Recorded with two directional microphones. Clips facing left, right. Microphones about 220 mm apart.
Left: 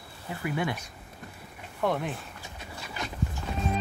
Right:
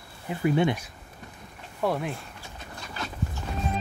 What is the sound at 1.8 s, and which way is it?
Speech, centre (ahead or behind).